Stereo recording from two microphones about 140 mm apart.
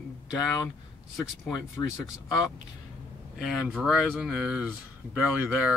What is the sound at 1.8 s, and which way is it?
Speech, 25° left (ahead or behind).